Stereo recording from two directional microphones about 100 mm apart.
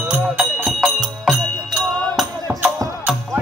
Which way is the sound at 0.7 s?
5° right (ahead or behind).